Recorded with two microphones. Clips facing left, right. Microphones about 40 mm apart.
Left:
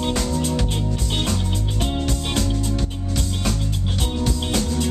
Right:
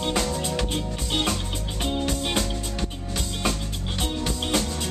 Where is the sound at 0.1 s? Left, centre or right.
Centre.